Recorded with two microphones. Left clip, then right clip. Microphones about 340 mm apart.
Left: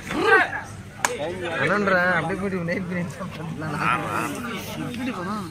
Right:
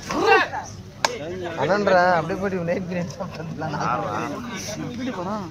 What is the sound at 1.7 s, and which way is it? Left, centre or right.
Speech, right.